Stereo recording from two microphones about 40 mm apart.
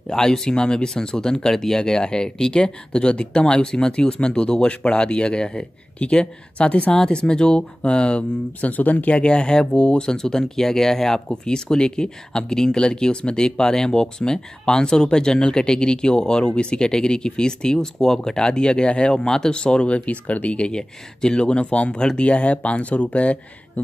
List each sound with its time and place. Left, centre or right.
0.1 s speech: centre
8.5 s speech: left
9.1 s speech: left
20.7 s speech: left